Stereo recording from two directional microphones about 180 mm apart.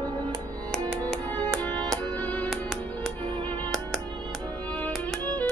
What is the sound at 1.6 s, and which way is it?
Music, 10° left (ahead or behind).